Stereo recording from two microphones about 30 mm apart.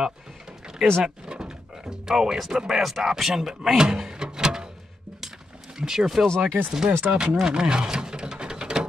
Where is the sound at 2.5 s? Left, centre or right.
Centre.